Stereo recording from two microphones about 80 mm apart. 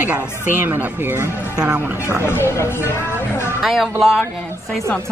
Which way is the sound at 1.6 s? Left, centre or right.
Centre.